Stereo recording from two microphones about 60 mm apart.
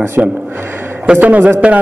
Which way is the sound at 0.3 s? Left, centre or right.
Right.